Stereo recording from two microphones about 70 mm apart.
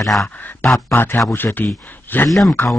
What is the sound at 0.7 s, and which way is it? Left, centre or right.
Speech, left.